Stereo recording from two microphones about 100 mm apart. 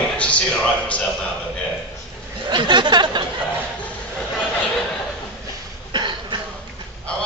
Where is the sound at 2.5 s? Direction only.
50° right (ahead or behind).